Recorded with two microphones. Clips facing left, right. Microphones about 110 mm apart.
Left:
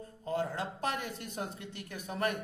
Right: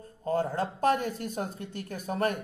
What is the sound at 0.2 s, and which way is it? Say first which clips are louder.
A man's voice: right 6 dB; 40° right (ahead or behind).